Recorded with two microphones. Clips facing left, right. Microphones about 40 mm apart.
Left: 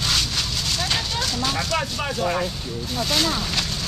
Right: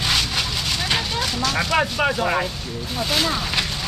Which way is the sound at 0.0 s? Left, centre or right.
Centre.